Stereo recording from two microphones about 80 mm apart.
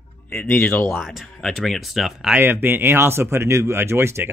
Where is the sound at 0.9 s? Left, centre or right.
Centre.